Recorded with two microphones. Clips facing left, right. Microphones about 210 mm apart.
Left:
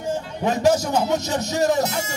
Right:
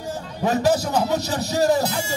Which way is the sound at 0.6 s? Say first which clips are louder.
Left 2 dB; 35° right (ahead or behind).